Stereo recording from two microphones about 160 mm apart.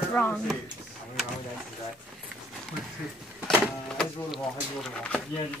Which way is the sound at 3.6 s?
Centre (ahead or behind).